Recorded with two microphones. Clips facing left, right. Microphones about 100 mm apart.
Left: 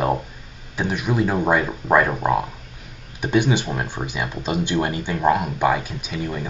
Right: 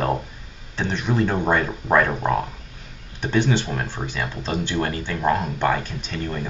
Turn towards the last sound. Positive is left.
turn(degrees=10)  # may be behind; listen again after turning